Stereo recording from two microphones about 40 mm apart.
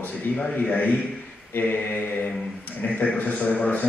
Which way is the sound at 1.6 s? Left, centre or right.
Left.